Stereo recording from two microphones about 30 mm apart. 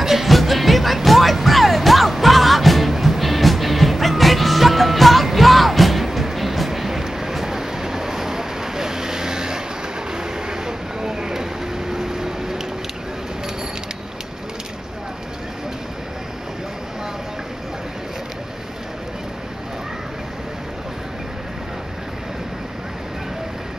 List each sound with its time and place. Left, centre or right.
0.0 s music: centre
10.1 s vehicle: right